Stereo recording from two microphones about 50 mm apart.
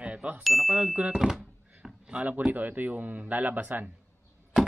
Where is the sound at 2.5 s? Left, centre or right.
Right.